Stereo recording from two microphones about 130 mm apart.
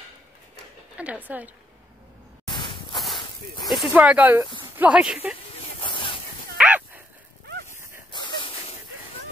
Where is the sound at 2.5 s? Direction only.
35° left (ahead or behind).